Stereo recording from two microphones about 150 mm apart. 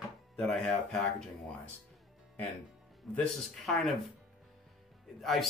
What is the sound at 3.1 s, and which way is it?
Speech, centre (ahead or behind).